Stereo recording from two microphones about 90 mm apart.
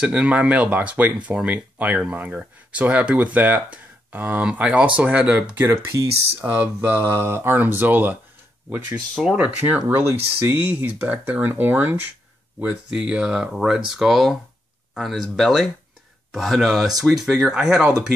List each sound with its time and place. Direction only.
0.0 s speech: 15° right (ahead or behind)
5.7 s speech: 35° right (ahead or behind)
9.1 s speech: 5° right (ahead or behind)
9.4 s speech: 20° right (ahead or behind)
12.5 s speech: 15° right (ahead or behind)